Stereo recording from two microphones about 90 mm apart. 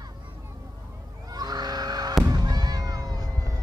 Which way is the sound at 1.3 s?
45° right (ahead or behind).